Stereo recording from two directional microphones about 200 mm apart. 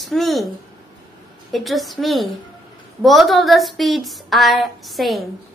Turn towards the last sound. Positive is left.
turn(degrees=0)  # may be behind; listen again after turning